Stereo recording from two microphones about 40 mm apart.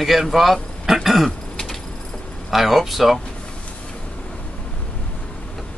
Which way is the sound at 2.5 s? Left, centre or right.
Centre.